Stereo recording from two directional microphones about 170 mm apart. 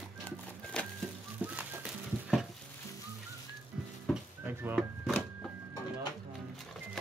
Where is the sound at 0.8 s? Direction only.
5° left (ahead or behind).